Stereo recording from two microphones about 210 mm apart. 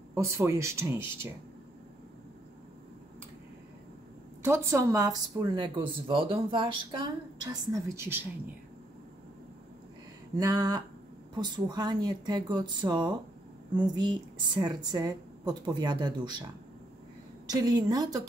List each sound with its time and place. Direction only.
0.1 s speech: 15° right (ahead or behind)
4.4 s speech: 15° right (ahead or behind)
10.3 s a woman's voice: 15° right (ahead or behind)
17.5 s a woman's voice: 20° right (ahead or behind)